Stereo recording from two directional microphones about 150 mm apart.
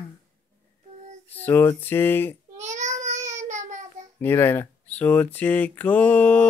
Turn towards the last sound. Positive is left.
turn(degrees=10)  # may be behind; listen again after turning